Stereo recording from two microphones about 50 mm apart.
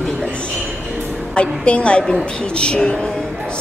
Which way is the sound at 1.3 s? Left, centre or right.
Left.